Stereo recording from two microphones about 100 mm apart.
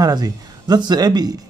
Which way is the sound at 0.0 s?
40° right (ahead or behind).